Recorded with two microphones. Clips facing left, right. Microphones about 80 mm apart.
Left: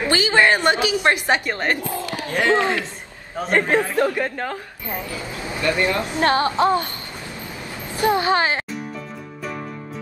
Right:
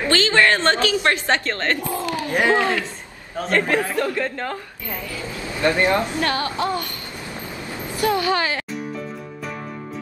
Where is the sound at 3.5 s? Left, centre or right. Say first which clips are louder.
Left 2 dB; left.